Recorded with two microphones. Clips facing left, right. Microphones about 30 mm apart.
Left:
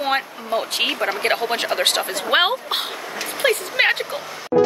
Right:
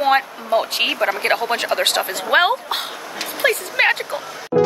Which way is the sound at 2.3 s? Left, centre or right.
Centre.